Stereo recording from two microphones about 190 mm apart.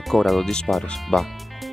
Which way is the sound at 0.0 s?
Centre (ahead or behind).